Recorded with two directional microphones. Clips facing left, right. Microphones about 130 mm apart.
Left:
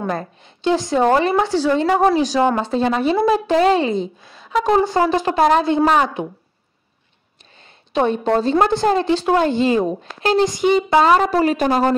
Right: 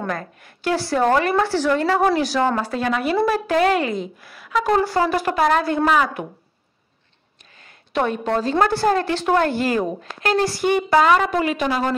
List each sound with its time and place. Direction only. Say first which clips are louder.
0.0 s a woman's voice: left 3 dB; 25° left (ahead or behind)
7.9 s a woman's voice: left 4 dB; 25° left (ahead or behind)
11.0 s a woman's voice: left 2 dB; 35° left (ahead or behind)